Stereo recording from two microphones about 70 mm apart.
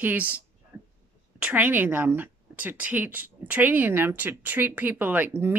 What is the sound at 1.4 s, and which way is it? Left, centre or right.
A woman's voice, right.